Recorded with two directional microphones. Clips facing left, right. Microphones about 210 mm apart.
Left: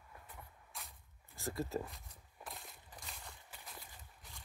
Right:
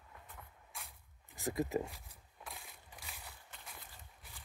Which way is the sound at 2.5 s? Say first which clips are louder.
Even; centre (ahead or behind).